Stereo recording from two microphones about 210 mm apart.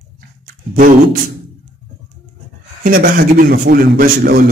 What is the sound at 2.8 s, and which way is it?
A man's voice, 40° right (ahead or behind).